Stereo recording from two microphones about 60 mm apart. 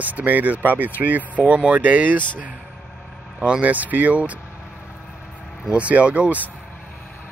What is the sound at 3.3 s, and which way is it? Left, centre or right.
Speech, centre.